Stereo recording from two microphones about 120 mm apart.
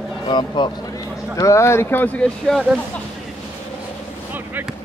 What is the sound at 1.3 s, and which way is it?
Speech, 25° left (ahead or behind).